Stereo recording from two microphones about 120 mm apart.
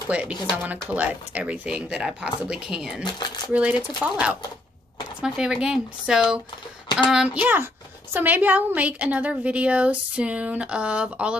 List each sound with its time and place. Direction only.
0.1 s a woman's voice: 10° right (ahead or behind)
3.0 s speech: 40° left (ahead or behind)
4.0 s a woman's voice: 10° right (ahead or behind)